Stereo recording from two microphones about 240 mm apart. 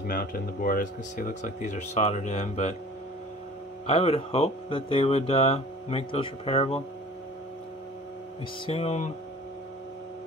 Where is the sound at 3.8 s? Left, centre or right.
Left.